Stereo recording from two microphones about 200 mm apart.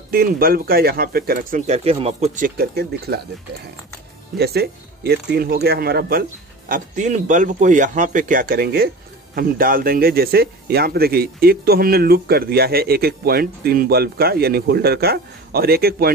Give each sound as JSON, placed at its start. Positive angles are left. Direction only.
{"t": 0.1, "sound": "speech", "side_deg": -45}
{"t": 1.7, "sound": "speech", "side_deg": -30}
{"t": 4.4, "sound": "speech", "side_deg": -55}
{"t": 6.7, "sound": "speech", "side_deg": -40}